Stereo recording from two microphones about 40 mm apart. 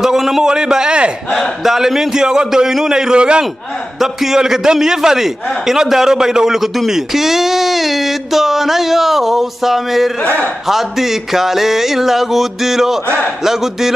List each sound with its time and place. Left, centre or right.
0.0 s a sound: centre
0.5 s a man's voice: centre
1.6 s a man's voice: centre; by 3.4 s right
4.0 s a man's voice: centre
10.2 s a man's voice: left
10.7 s a man's voice: centre